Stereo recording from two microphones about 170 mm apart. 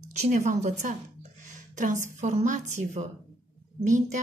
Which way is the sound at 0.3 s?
45° right (ahead or behind).